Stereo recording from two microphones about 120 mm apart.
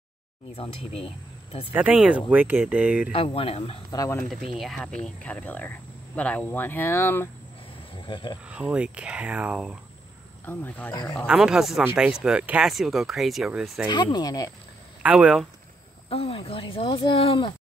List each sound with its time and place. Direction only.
0.6 s speech: 55° left (ahead or behind)
1.7 s speech: 10° right (ahead or behind)
3.1 s speech: 50° left (ahead or behind)
3.9 s speech: 25° left (ahead or behind)
4.6 s speech: centre (ahead or behind); by 7.2 s 20° left (ahead or behind)
7.9 s speech: 45° left (ahead or behind)
8.5 s speech: 10° right (ahead or behind)
10.4 s speech: 15° left (ahead or behind)
11.2 s speech: 5° right (ahead or behind)
13.8 s speech: 40° left (ahead or behind)
15.0 s speech: 10° right (ahead or behind)
16.1 s speech: 50° left (ahead or behind)